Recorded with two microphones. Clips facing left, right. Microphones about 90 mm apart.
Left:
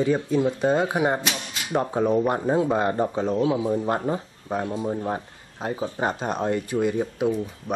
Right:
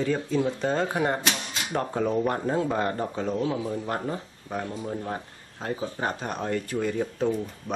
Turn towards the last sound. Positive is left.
turn(degrees=15)  # may be behind; listen again after turning